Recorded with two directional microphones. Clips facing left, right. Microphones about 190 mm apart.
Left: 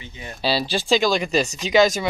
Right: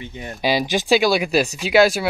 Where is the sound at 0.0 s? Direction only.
55° right (ahead or behind).